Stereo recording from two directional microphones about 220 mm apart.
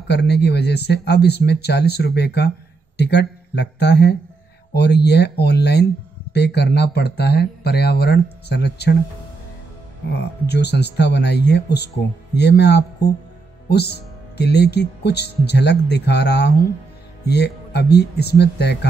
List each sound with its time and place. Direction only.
0.1 s speech: 50° left (ahead or behind)
10.1 s speech: 50° left (ahead or behind)